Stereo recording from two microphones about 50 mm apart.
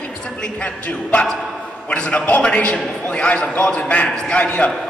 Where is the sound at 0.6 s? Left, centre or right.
Left.